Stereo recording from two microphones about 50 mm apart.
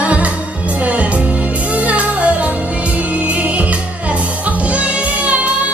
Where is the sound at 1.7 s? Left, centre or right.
Right.